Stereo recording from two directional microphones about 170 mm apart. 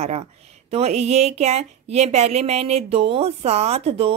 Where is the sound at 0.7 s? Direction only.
40° right (ahead or behind).